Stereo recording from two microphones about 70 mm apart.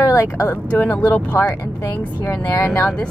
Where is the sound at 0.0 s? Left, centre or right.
Left.